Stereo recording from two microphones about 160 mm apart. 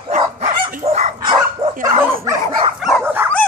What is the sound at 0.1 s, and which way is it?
Dog, 55° right (ahead or behind).